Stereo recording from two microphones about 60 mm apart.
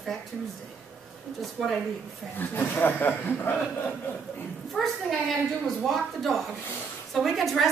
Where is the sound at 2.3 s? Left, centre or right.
Left.